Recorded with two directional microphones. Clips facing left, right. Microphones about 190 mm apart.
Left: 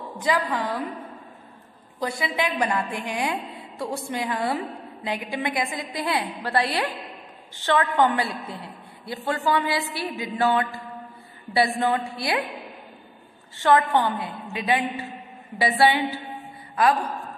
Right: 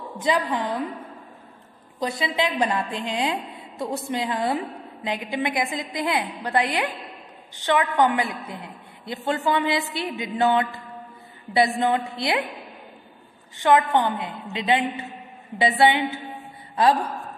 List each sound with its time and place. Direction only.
0.2 s a woman's voice: 20° right (ahead or behind)
2.0 s a woman's voice: 20° right (ahead or behind)
13.6 s a woman's voice: 15° right (ahead or behind)